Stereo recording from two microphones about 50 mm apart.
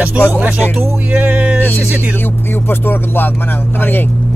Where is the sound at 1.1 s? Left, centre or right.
Right.